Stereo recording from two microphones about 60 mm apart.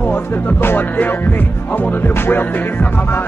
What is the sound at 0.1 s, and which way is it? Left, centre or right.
Music, left.